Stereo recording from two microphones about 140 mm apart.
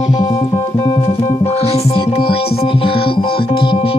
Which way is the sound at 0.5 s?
25° left (ahead or behind).